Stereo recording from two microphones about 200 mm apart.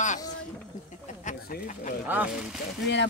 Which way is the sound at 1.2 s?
40° left (ahead or behind).